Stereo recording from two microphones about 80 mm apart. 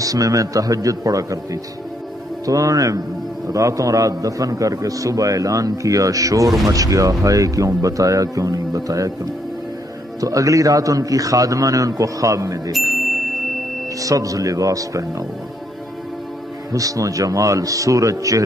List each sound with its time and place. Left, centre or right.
0.0 s a man's voice: right
12.9 s music: centre
13.9 s a man's voice: right
16.7 s a man's voice: right